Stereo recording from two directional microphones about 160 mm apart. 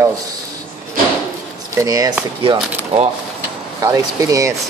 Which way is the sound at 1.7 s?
20° right (ahead or behind).